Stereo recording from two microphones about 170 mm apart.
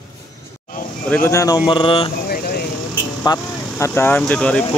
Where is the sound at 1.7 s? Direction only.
30° left (ahead or behind).